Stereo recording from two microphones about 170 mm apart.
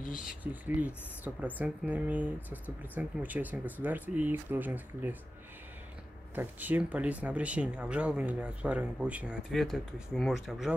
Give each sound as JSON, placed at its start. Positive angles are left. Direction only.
{"t": 0.2, "sound": "speech", "side_deg": -5}
{"t": 6.3, "sound": "speech", "side_deg": -10}